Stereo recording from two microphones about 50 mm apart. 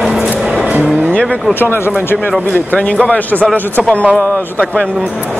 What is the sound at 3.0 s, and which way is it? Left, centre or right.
Speech, left.